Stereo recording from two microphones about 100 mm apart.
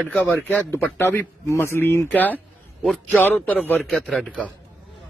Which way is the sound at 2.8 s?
5° right (ahead or behind).